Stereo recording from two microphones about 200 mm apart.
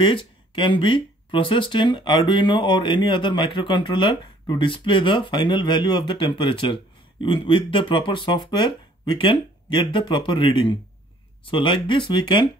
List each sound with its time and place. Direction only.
0.0 s speech: 25° left (ahead or behind)